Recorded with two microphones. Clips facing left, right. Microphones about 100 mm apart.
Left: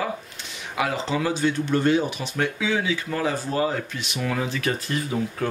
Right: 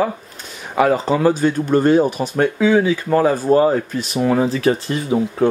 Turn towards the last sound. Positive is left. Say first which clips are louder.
# right 7 dB
turn(degrees=-25)  # may be behind; listen again after turning